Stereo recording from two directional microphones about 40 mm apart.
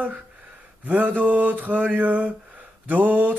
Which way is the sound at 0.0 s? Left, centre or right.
Right.